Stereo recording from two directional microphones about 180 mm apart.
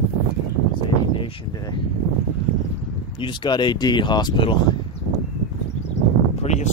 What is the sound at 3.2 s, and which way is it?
Speech, 25° left (ahead or behind).